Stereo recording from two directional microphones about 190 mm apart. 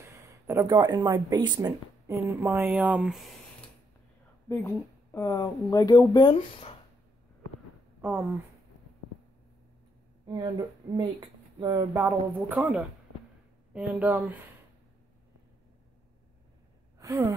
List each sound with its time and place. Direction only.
0.0 s speech: 15° right (ahead or behind)
4.5 s speech: 15° left (ahead or behind)
8.0 s speech: 10° right (ahead or behind)
10.2 s speech: 25° right (ahead or behind)
12.0 s speech: 10° right (ahead or behind)
17.0 s speech: 15° right (ahead or behind)